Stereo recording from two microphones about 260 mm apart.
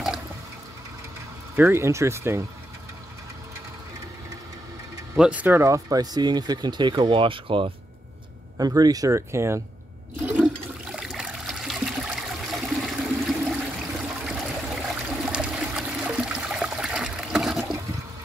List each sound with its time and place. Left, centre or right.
1.6 s speech: centre
5.1 s speech: centre
10.2 s toilet flush: centre
15.0 s trickle: centre